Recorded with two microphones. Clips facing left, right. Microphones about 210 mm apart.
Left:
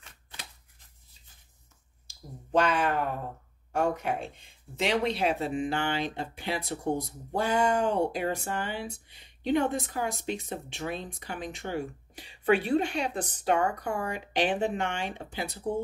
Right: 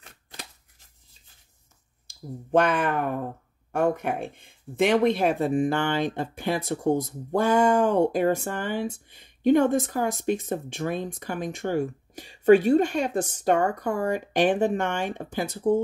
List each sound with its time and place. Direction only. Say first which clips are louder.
0.0 s scissors: right 4 dB; 40° right (ahead or behind)
2.0 s speech: right 10 dB; 55° right (ahead or behind)